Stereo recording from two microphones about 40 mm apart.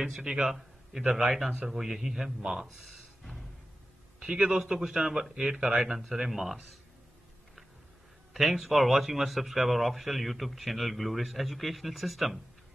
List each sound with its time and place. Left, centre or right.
0.2 s a man's voice: right
0.5 s a man's voice: centre
2.5 s music: centre
4.2 s a man's voice: centre
8.3 s speech: centre